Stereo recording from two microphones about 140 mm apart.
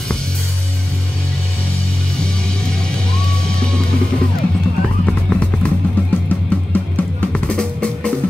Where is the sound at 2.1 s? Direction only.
5° left (ahead or behind).